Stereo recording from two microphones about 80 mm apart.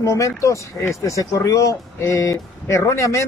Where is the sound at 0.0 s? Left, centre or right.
Left.